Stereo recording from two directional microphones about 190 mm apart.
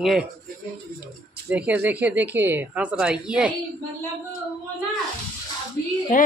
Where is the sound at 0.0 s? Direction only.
Centre (ahead or behind).